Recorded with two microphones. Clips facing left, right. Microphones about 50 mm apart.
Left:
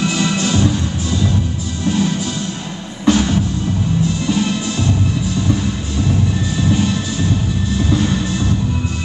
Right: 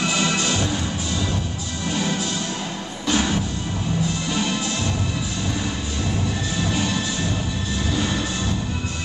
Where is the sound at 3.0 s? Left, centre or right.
Centre.